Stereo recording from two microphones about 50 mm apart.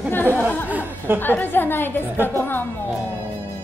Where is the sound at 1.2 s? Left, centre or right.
Left.